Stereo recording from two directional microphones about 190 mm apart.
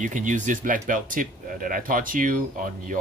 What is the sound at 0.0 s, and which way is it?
Speech, 40° right (ahead or behind).